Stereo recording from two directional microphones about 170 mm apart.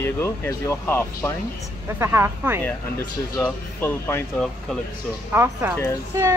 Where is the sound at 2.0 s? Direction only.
15° right (ahead or behind).